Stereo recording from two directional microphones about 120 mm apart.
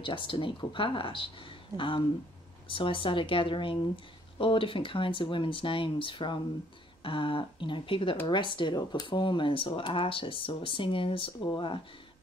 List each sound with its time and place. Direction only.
0.0 s speech: 45° left (ahead or behind)